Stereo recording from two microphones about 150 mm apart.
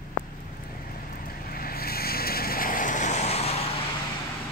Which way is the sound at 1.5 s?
90° left.